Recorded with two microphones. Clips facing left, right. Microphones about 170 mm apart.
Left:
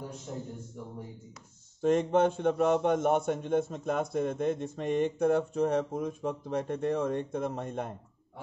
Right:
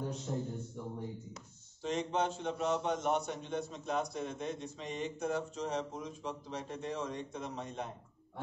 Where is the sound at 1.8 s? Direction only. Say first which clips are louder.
Left 9 dB; 50° left (ahead or behind).